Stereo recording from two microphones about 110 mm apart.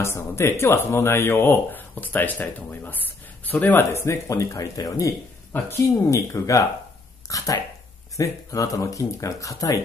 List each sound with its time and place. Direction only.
0.0 s speech: 25° left (ahead or behind)
5.5 s speech: 20° left (ahead or behind)